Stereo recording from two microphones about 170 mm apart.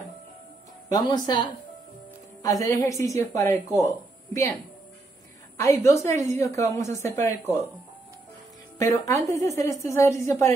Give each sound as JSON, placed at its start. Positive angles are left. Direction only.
{"t": 0.8, "sound": "speech", "side_deg": 25}
{"t": 6.0, "sound": "speech", "side_deg": 15}
{"t": 8.7, "sound": "speech", "side_deg": 15}